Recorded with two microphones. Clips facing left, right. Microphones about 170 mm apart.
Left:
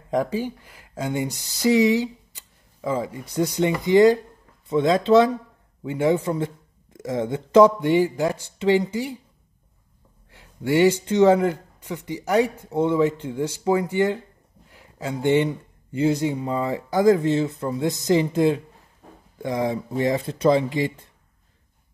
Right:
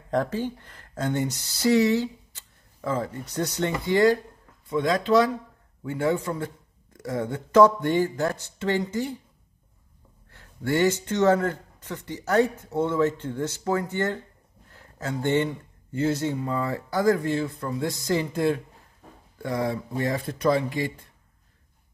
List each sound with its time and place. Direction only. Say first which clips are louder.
0.1 s a man's voice: left 2 dB; 10° left (ahead or behind)
10.3 s a man's voice: left 4 dB; 15° left (ahead or behind)